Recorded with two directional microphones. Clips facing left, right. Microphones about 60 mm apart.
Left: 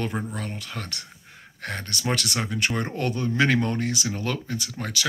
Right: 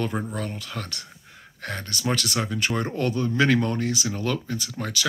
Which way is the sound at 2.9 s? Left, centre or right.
Left.